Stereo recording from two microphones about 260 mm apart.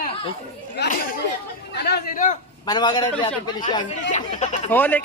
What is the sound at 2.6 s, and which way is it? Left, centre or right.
Speech, centre.